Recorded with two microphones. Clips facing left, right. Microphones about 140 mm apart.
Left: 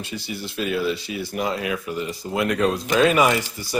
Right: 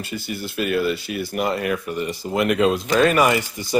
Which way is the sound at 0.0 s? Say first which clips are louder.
Right 2 dB; centre (ahead or behind).